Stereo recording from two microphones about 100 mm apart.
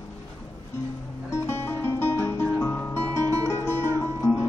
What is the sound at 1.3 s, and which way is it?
Music, 25° left (ahead or behind).